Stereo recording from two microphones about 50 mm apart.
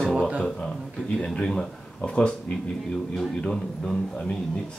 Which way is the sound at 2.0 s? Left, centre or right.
Left.